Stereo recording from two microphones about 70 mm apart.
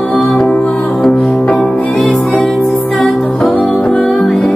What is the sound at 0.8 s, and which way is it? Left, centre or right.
Music, centre.